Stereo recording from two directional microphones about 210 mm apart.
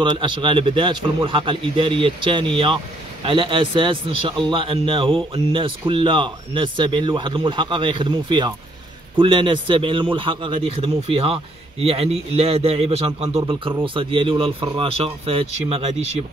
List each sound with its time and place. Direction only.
0.0 s a man's voice: 25° right (ahead or behind)